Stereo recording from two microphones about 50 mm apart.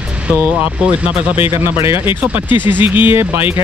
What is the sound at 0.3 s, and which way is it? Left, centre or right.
Speech, right.